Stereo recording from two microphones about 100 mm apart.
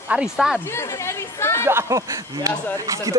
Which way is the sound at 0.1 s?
5° right (ahead or behind).